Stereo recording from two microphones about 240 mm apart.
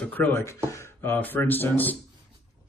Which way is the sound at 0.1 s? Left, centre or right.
Centre.